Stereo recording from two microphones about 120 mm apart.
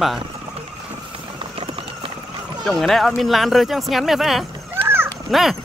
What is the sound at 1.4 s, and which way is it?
Horse, 50° right (ahead or behind).